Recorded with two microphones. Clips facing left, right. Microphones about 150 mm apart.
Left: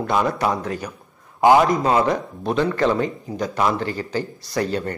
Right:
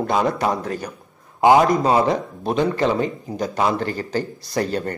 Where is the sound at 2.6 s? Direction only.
15° right (ahead or behind).